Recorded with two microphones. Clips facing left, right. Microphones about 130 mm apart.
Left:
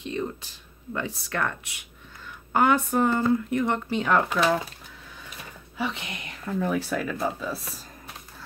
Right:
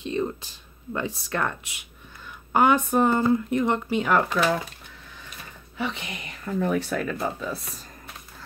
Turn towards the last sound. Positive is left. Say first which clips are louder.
# even
turn(degrees=5)  # may be behind; listen again after turning